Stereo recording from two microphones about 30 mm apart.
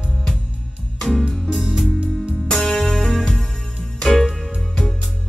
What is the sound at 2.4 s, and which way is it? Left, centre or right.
Music, centre.